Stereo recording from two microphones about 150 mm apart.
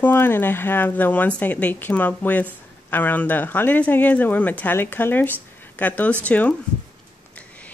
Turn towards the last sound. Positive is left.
turn(degrees=10)  # may be behind; listen again after turning